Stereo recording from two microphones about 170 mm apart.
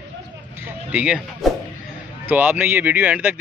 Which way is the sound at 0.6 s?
5° right (ahead or behind).